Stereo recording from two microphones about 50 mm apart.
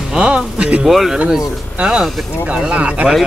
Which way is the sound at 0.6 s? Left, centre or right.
Right.